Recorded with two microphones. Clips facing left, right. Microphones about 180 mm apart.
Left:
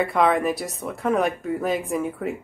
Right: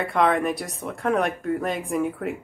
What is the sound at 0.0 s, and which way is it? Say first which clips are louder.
Speech: left 1 dB; centre (ahead or behind).